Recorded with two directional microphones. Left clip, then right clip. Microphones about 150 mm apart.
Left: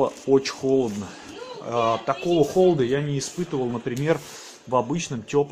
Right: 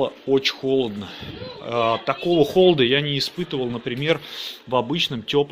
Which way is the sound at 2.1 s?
5° right (ahead or behind).